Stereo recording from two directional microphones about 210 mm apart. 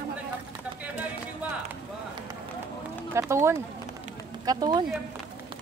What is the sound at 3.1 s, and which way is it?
Speech, 15° right (ahead or behind).